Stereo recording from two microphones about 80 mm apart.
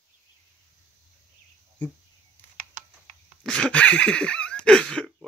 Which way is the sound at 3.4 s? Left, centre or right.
Centre.